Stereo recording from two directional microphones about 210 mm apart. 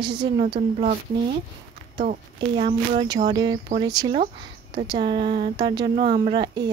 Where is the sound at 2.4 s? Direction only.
30° right (ahead or behind).